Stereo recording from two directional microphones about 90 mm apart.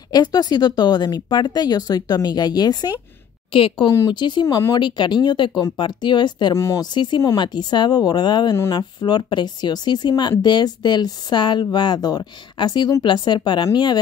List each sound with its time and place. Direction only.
0.1 s speech: 50° left (ahead or behind)
3.5 s a woman's voice: 70° left (ahead or behind)
4.1 s speech: 55° left (ahead or behind)
6.5 s speech: 30° left (ahead or behind)
6.8 s speech: 55° left (ahead or behind)